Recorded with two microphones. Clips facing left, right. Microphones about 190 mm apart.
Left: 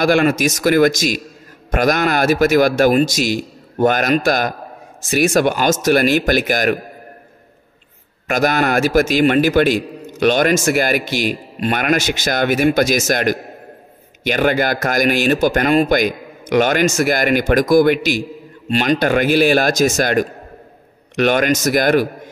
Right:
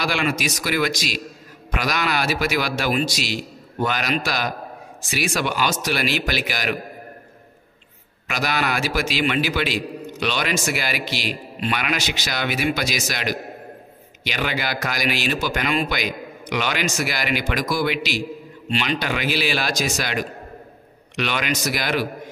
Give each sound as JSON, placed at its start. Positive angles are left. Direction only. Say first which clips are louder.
{"t": 0.0, "sound": "a man's voice", "louder": "left 9 dB", "side_deg": 50}
{"t": 8.3, "sound": "a man's voice", "louder": "left 8 dB", "side_deg": 50}